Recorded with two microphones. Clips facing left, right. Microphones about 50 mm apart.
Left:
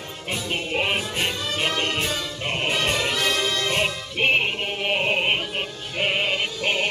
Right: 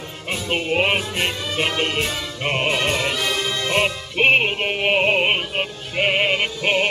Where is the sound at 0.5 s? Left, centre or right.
Right.